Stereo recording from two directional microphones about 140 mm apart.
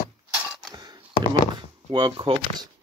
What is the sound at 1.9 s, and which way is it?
Speech, 35° right (ahead or behind).